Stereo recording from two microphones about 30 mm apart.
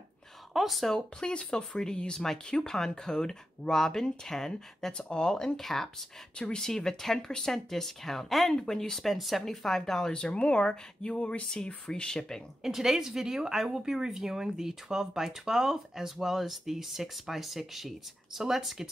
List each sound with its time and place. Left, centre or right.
0.5 s speech: centre
1.4 s speech: left
4.9 s speech: left
5.6 s speech: centre
6.3 s speech: left
6.6 s speech: centre
8.5 s speech: centre
9.1 s speech: centre
9.4 s speech: centre
10.1 s speech: left
11.0 s a sound: left
11.5 s speech: left
12.6 s speech: centre